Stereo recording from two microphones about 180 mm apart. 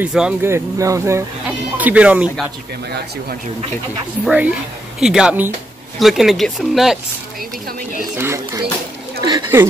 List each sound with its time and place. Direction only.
0.0 s speech: 5° right (ahead or behind)
4.2 s speech: 5° right (ahead or behind)
8.2 s speech: 15° right (ahead or behind)